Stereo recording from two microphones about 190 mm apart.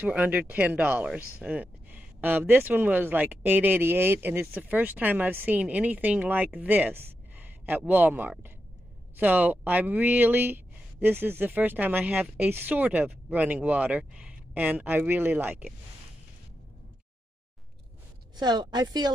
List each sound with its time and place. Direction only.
0.0 s speech: 10° right (ahead or behind)
18.3 s a woman's voice: 20° right (ahead or behind)